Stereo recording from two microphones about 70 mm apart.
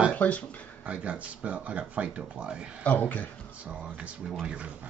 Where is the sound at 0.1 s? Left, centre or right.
Centre.